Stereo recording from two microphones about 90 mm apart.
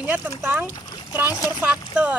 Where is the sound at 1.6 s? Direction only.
15° right (ahead or behind).